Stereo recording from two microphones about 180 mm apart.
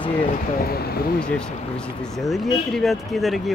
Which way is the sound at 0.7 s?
60° left (ahead or behind).